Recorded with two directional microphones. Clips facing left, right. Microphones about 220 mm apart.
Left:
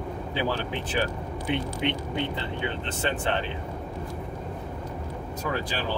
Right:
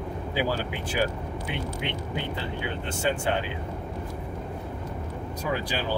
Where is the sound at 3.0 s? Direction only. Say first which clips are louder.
Right 1 dB; 10° right (ahead or behind).